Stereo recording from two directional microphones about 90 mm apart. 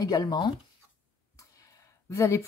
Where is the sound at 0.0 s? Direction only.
50° left (ahead or behind).